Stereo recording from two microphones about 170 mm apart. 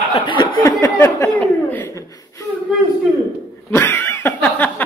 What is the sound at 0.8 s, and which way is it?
Chuckle, 15° left (ahead or behind).